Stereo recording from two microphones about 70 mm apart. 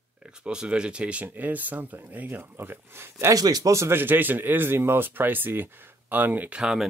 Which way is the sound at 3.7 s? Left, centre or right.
Right.